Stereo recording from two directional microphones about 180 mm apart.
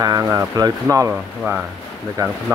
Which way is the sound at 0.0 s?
15° right (ahead or behind).